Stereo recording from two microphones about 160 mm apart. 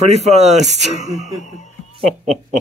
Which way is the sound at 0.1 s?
45° right (ahead or behind).